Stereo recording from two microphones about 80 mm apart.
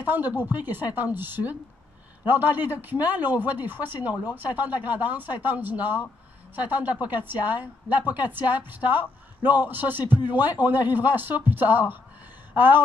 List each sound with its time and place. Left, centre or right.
0.0 s a woman's voice: right